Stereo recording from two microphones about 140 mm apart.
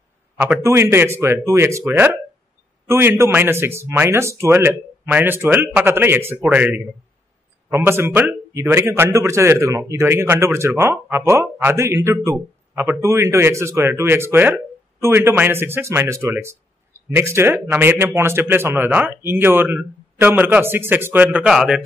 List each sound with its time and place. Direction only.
0.7 s speech: 15° right (ahead or behind)